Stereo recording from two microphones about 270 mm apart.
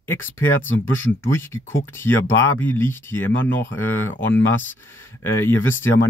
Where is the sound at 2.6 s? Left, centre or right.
Centre.